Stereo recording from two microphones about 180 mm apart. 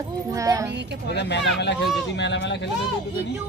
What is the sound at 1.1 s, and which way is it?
Speech, 70° left (ahead or behind).